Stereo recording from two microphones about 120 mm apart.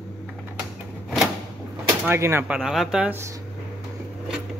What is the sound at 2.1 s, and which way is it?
Speech, 20° right (ahead or behind).